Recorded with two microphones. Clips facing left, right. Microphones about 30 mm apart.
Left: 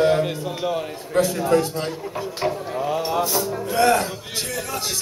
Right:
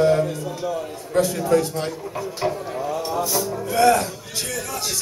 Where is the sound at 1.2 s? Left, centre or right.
Left.